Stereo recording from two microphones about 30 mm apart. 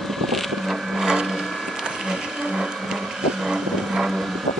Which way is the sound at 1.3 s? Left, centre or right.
Centre.